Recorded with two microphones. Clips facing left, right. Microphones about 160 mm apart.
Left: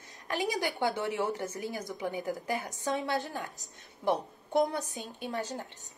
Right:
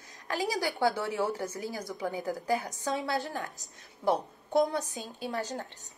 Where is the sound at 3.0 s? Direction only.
40° right (ahead or behind).